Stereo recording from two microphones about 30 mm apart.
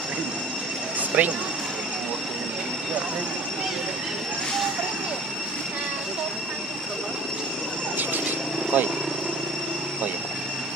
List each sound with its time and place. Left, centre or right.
1.1 s speech: right
8.7 s speech: right